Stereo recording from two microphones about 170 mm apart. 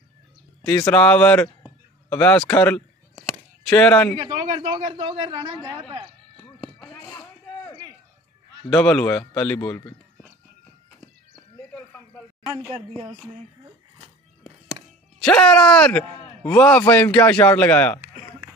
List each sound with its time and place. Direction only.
0.7 s a man's voice: 10° left (ahead or behind)
2.5 s a sound: 10° left (ahead or behind)
4.3 s a man's voice: 35° right (ahead or behind)
6.3 s chop: 5° left (ahead or behind)
8.6 s a man's voice: 5° left (ahead or behind)
15.2 s a man's voice: 5° left (ahead or behind)